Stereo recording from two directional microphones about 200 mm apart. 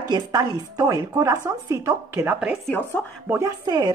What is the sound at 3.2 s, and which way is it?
Speech, 15° right (ahead or behind).